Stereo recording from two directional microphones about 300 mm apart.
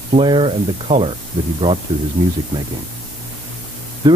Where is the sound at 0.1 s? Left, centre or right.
Centre.